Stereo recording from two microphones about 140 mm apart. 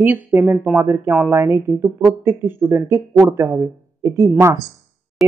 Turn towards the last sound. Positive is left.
turn(degrees=-20)  # may be behind; listen again after turning